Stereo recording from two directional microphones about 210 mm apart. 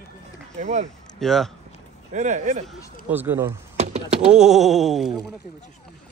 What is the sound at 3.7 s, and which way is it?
Typing, 30° right (ahead or behind).